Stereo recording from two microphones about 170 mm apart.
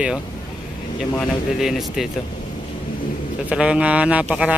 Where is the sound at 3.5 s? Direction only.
5° right (ahead or behind).